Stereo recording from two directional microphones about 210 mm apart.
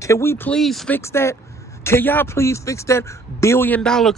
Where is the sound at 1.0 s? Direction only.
15° left (ahead or behind).